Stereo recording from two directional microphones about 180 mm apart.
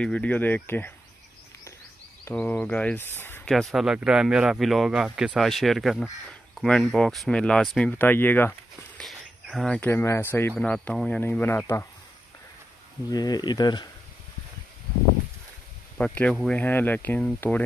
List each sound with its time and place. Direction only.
0.0 s speech: 5° left (ahead or behind)
2.2 s speech: 10° left (ahead or behind)
8.9 s speech: centre (ahead or behind)
13.1 s speech: 20° left (ahead or behind)
16.0 s speech: 5° left (ahead or behind)